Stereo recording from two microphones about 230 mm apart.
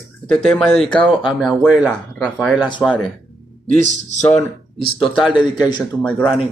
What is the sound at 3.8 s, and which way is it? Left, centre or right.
Speech, left.